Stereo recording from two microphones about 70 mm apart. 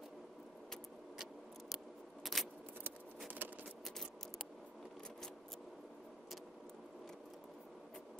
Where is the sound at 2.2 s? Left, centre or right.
Centre.